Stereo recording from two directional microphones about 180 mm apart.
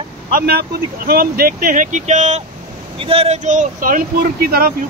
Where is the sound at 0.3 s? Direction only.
55° right (ahead or behind).